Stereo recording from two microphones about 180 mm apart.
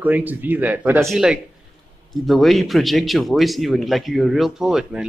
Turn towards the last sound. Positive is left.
turn(degrees=-5)  # may be behind; listen again after turning